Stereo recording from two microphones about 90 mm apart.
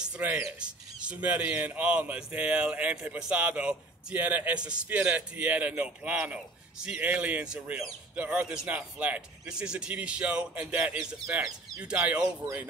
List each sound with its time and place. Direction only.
0.0 s speech: 15° right (ahead or behind)